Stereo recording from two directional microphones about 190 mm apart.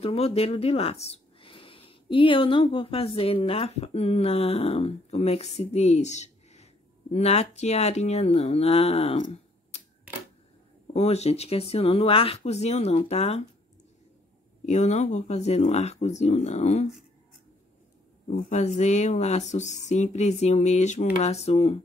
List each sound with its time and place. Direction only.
0.0 s speech: 30° left (ahead or behind)
10.1 s camera: 10° right (ahead or behind)
10.9 s speech: 35° left (ahead or behind)
14.7 s speech: 35° left (ahead or behind)
18.3 s speech: 35° left (ahead or behind)